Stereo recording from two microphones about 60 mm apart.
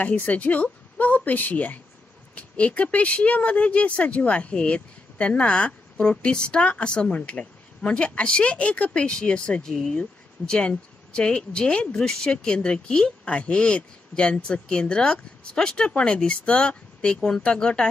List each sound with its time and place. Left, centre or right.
0.0 s speech: left